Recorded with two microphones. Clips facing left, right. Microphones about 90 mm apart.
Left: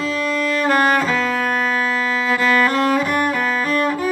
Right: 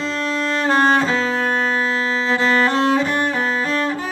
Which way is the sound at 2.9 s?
30° right (ahead or behind).